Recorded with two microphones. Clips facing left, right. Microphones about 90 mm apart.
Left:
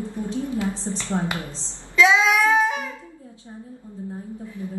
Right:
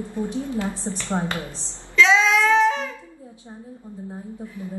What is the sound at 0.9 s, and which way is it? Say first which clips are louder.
Speech: left 1 dB; 30° right (ahead or behind).